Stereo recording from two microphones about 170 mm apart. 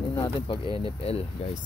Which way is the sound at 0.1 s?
25° left (ahead or behind).